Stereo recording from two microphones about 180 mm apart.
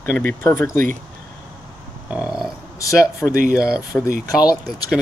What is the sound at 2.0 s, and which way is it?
Grunt, 5° right (ahead or behind).